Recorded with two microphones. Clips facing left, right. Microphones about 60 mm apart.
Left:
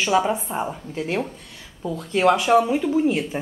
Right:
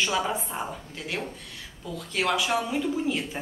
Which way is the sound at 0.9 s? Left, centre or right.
Left.